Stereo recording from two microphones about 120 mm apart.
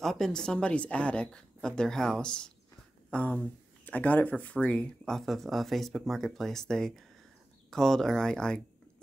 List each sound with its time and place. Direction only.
0.0 s a woman's voice: 5° left (ahead or behind)